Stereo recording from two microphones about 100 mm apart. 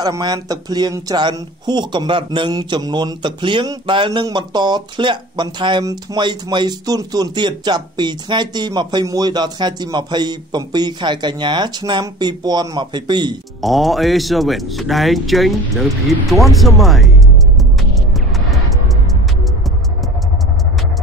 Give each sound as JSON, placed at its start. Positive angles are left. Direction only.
{"t": 0.2, "sound": "a man's voice", "side_deg": -40}
{"t": 13.6, "sound": "speech", "side_deg": 0}